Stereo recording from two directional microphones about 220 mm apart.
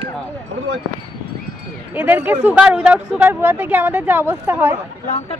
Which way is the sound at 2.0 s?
10° right (ahead or behind).